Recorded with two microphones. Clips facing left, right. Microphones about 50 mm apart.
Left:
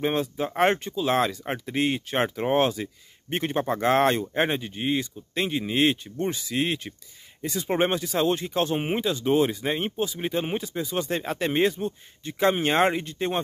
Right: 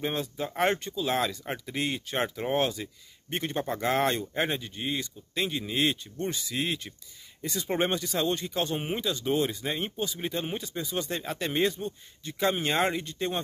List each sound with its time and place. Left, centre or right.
0.0 s speech: left
4.2 s speech: left